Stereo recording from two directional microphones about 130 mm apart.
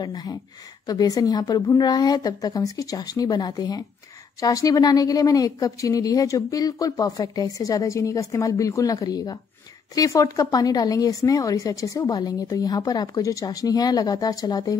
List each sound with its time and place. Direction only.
0.0 s a woman's voice: 30° left (ahead or behind)